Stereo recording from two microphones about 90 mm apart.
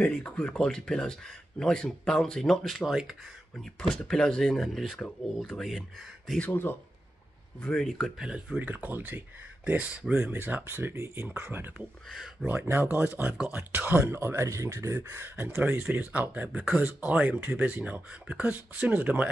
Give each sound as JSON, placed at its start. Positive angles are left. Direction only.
{"t": 0.0, "sound": "speech", "side_deg": 10}
{"t": 6.4, "sound": "speech", "side_deg": 25}
{"t": 7.6, "sound": "speech", "side_deg": 5}
{"t": 8.2, "sound": "speech", "side_deg": -10}
{"t": 8.5, "sound": "speech", "side_deg": -20}
{"t": 12.1, "sound": "speech", "side_deg": 5}
{"t": 12.5, "sound": "speech", "side_deg": -30}